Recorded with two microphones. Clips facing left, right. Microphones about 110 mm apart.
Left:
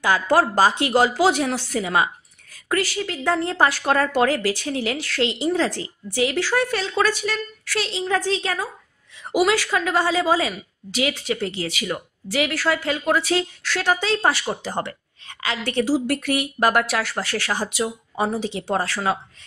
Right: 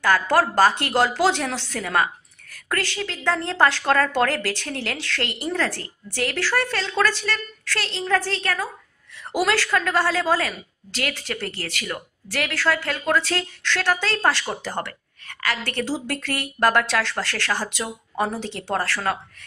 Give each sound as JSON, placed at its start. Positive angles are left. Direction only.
{"t": 0.0, "sound": "a woman's voice", "side_deg": 15}